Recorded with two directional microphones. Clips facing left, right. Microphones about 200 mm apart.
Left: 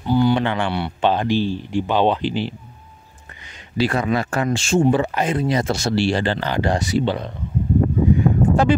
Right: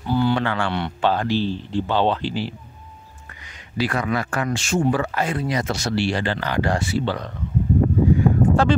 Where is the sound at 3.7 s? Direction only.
25° left (ahead or behind).